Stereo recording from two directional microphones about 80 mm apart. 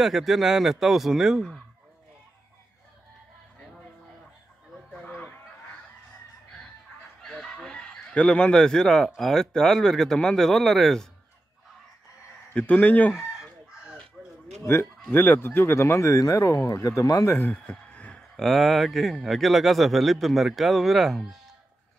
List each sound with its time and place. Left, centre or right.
0.0 s speech: centre
4.9 s a sound: left
7.2 s chicken: centre
9.2 s speech: centre
12.5 s a man's voice: centre
13.1 s chicken: centre
14.2 s a sound: centre
14.6 s speech: left
17.4 s a sound: centre
18.3 s speech: centre